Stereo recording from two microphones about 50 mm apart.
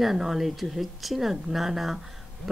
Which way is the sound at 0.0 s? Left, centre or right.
Centre.